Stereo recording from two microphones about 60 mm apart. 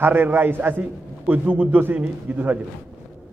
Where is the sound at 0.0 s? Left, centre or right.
Right.